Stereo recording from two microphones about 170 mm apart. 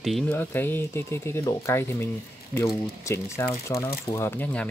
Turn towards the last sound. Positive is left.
turn(degrees=10)  # may be behind; listen again after turning